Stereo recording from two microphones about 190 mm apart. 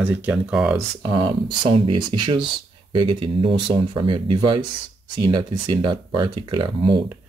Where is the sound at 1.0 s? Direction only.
20° right (ahead or behind).